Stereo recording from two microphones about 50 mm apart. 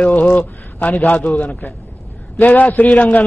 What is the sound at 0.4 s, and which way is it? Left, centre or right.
A man's voice, left.